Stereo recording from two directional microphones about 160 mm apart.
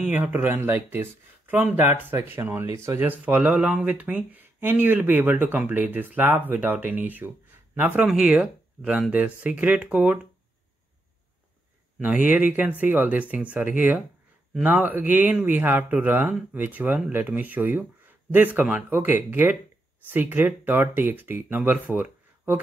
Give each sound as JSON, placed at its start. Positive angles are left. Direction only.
{"t": 0.0, "sound": "speech", "side_deg": -10}
{"t": 12.0, "sound": "speech", "side_deg": -10}